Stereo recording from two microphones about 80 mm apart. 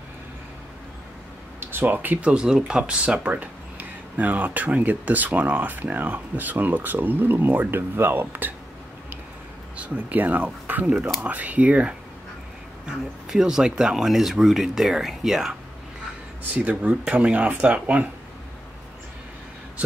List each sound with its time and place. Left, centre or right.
1.6 s speech: right
2.3 s speech: centre
9.8 s speech: centre
10.9 s speech: centre
11.1 s speech: centre
16.5 s speech: centre